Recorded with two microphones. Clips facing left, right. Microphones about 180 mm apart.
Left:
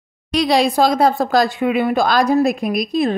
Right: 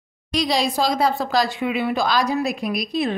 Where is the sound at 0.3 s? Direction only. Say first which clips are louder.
Left 6 dB; 60° left (ahead or behind).